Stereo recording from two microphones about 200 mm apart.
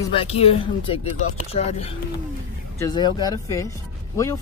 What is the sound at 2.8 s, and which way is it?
Speech, 20° left (ahead or behind).